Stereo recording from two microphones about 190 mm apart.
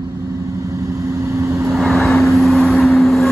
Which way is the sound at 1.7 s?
Centre (ahead or behind).